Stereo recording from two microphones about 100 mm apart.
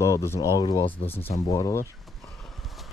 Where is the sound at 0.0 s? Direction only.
30° left (ahead or behind).